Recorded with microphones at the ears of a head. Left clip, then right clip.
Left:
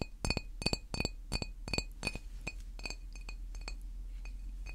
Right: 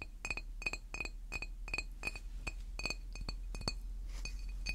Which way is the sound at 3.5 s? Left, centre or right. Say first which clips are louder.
Right 7 dB; right.